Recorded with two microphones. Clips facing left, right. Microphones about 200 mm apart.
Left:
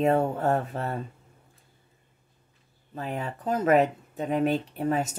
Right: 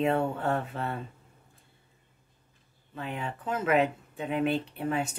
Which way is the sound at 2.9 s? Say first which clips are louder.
Left 3 dB; 40° left (ahead or behind).